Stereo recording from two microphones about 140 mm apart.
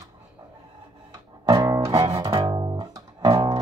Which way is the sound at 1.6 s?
25° right (ahead or behind).